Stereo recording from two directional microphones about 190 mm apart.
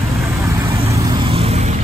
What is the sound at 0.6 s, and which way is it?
Vehicle, 30° right (ahead or behind).